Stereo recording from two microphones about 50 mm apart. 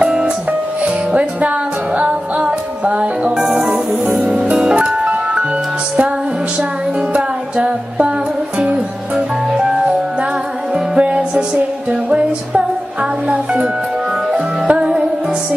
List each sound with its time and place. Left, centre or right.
0.0 s music: right
3.3 s music: centre
7.2 s music: right
13.3 s speech: centre
14.3 s music: right